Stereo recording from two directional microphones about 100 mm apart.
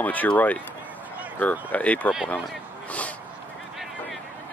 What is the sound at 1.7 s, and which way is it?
Speech, 15° left (ahead or behind).